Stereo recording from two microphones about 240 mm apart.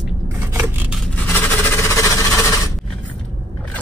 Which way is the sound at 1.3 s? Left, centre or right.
Centre.